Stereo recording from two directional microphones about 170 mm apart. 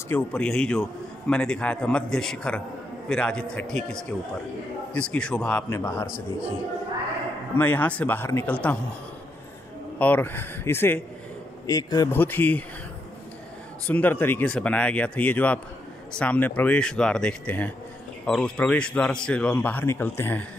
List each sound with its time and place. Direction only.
0.1 s a man's voice: 5° left (ahead or behind)
7.5 s a man's voice: 10° left (ahead or behind)
9.9 s a man's voice: 10° left (ahead or behind)
12.2 s a man's voice: 10° left (ahead or behind)
13.8 s a man's voice: 10° left (ahead or behind)